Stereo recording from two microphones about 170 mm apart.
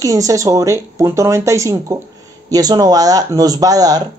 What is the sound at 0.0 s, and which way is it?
Speech, 20° right (ahead or behind).